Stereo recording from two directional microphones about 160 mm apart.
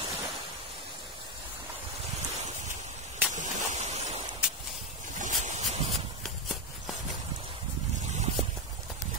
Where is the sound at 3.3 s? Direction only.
50° right (ahead or behind).